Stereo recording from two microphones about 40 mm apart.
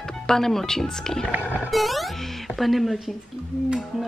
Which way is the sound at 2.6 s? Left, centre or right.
Centre.